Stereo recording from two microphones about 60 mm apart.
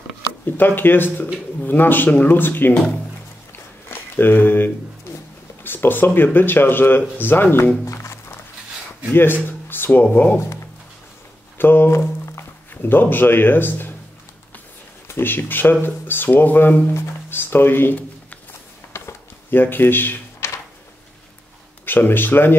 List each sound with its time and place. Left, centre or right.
0.5 s speech: left
3.5 s a sound: left
5.6 s speech: left
7.8 s music: left
9.1 s speech: left
11.5 s speech: left
12.3 s music: left
15.0 s speech: left
18.9 s a sound: left
21.8 s speech: left